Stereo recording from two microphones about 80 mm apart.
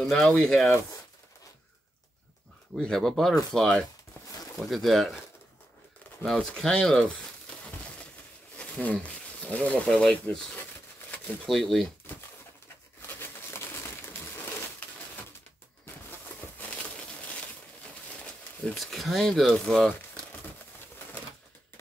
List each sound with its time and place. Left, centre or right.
0.0 s speech: centre
2.8 s speech: centre
6.2 s speech: centre
8.8 s speech: centre
9.8 s speech: centre
11.4 s speech: centre
13.0 s a sound: left
18.2 s a sound: centre
18.8 s speech: centre